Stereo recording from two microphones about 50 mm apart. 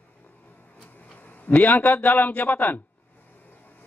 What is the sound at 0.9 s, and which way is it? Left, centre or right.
A man's voice, left.